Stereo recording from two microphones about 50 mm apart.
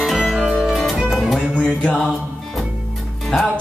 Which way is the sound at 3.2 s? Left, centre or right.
Centre.